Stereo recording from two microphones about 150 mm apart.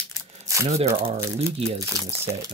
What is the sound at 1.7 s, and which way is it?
Speech, 20° right (ahead or behind).